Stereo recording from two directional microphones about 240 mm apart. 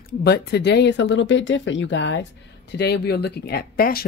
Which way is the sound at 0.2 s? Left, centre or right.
Left.